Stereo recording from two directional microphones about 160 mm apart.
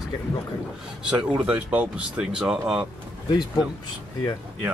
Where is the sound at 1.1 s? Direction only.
5° right (ahead or behind).